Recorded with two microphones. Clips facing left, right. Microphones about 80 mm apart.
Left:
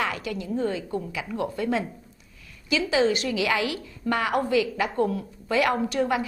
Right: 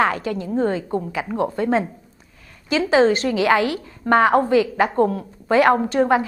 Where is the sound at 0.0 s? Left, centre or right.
Right.